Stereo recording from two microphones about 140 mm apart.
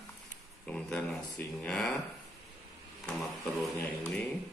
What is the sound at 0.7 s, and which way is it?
Speech, 10° left (ahead or behind).